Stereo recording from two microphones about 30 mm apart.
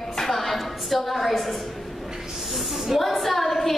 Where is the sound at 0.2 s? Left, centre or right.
Centre.